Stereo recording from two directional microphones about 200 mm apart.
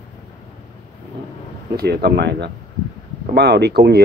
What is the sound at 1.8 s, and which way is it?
Speech, 55° right (ahead or behind).